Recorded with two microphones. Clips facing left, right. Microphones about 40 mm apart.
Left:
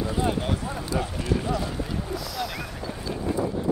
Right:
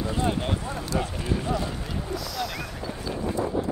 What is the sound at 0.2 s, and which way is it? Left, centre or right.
Run, centre.